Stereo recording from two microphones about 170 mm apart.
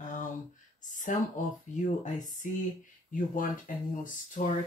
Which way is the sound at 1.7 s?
45° left (ahead or behind).